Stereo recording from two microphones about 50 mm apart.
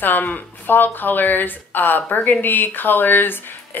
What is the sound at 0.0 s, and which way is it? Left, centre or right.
Speech, left.